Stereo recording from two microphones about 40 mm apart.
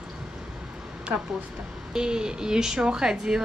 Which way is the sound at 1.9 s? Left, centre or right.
Centre.